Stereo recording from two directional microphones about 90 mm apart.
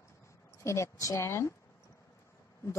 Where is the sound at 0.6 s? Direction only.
35° left (ahead or behind).